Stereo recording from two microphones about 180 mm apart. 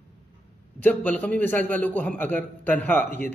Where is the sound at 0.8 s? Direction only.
10° left (ahead or behind).